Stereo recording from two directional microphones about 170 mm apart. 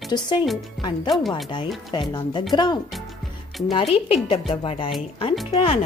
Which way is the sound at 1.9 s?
25° left (ahead or behind).